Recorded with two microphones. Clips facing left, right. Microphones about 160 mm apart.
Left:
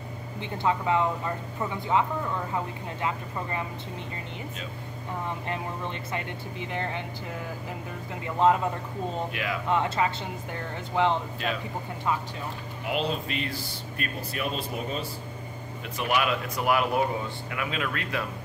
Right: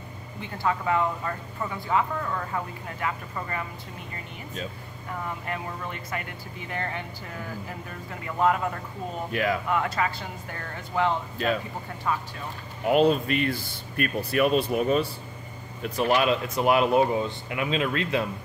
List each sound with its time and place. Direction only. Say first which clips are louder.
0.4 s speech: left 1 dB; 20° left (ahead or behind)
5.5 s speech: left 1 dB; 25° left (ahead or behind)
9.3 s speech: right 6 dB; 45° right (ahead or behind)
9.7 s speech: left 1 dB; 25° left (ahead or behind)
12.8 s speech: right 9 dB; 50° right (ahead or behind); by 15.0 s 65° right (ahead or behind)
15.8 s speech: right 4 dB; 30° right (ahead or behind)